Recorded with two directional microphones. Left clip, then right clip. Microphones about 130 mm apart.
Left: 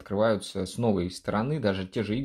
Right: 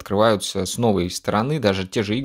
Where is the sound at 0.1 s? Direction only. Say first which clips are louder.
Right 7 dB; 50° right (ahead or behind).